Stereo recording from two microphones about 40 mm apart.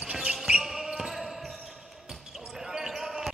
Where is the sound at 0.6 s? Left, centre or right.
Centre.